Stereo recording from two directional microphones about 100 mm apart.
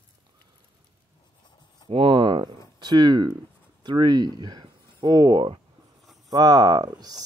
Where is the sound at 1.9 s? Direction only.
60° right (ahead or behind).